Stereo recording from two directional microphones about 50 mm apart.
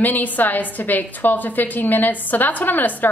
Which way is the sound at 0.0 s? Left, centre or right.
Left.